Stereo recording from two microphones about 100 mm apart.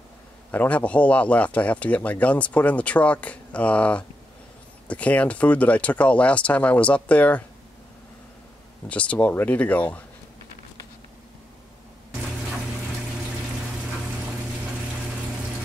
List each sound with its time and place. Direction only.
0.5 s a man's voice: 15° left (ahead or behind)
8.8 s a man's voice: 10° left (ahead or behind)